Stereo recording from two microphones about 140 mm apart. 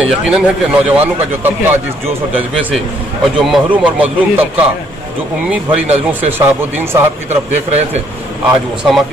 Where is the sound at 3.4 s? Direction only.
5° right (ahead or behind).